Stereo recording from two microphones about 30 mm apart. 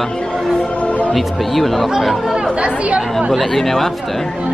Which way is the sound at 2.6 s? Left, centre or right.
Right.